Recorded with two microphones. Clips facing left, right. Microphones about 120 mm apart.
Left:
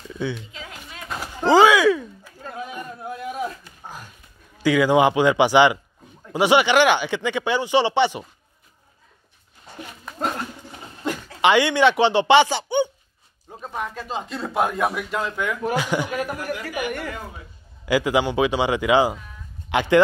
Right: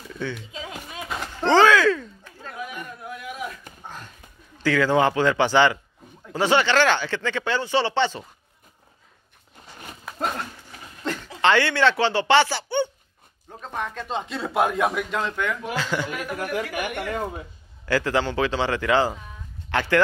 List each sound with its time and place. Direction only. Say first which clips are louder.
0.1 s speech: left 3 dB; 15° left (ahead or behind)
0.5 s a sound: right 3 dB; 20° right (ahead or behind)
1.0 s a sound: left 2 dB; 5° left (ahead or behind)
2.5 s a sound: left 2 dB; 25° left (ahead or behind)
4.6 s speech: left 3 dB; 15° left (ahead or behind)
10.0 s dog: left 1 dB; centre (ahead or behind)
11.0 s a sound: left 2 dB; 10° left (ahead or behind)
11.4 s speech: left 3 dB; 15° left (ahead or behind)
15.7 s speech: left 4 dB; 15° left (ahead or behind)
16.1 s speech: left 4 dB; 40° left (ahead or behind)
16.7 s speech: even; 50° right (ahead or behind)
17.8 s speech: left 3 dB; 15° left (ahead or behind)